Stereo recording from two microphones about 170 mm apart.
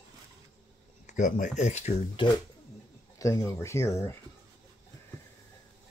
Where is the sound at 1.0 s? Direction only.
45° left (ahead or behind).